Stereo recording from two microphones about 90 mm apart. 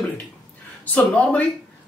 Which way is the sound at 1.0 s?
15° left (ahead or behind).